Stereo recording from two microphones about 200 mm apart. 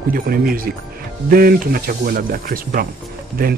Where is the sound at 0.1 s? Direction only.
45° right (ahead or behind).